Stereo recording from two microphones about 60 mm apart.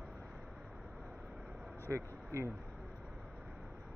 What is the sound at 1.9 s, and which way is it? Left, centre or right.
Speech, right.